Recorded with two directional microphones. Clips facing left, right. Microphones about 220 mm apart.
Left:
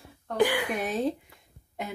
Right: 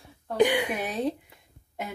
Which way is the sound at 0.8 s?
Centre (ahead or behind).